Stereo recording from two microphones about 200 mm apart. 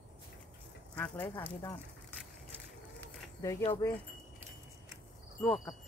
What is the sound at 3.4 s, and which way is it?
Speech, 15° left (ahead or behind).